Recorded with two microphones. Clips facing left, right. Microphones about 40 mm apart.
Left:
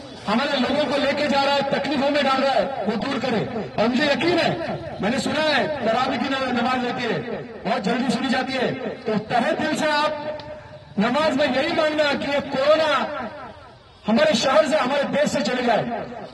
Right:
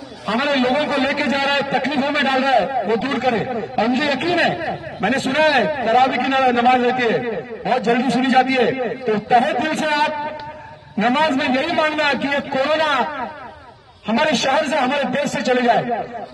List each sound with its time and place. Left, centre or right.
0.3 s a man's voice: right
4.3 s a man's voice: right
13.0 s a sound: right
14.0 s a man's voice: right